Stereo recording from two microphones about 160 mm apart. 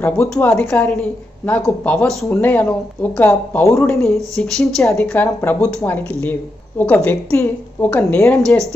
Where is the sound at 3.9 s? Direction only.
5° left (ahead or behind).